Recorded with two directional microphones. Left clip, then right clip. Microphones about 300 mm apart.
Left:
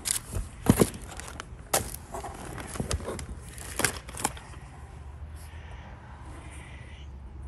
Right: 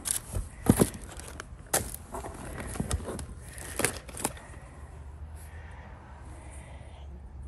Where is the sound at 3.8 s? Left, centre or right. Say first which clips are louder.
Left 2 dB; centre.